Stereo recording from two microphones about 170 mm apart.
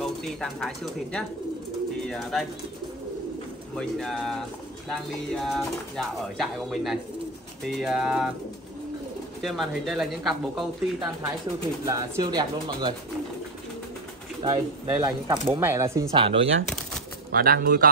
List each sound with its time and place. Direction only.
0.0 s speech: centre (ahead or behind)
3.7 s speech: 5° left (ahead or behind)
9.4 s speech: centre (ahead or behind)
11.8 s speech: 20° right (ahead or behind)
14.4 s speech: 20° right (ahead or behind)
16.1 s speech: 30° right (ahead or behind)
17.3 s speech: 60° right (ahead or behind)